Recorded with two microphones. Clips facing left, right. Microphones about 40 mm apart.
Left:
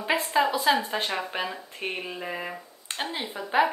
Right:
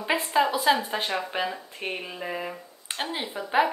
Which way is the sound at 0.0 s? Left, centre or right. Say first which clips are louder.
Even; centre.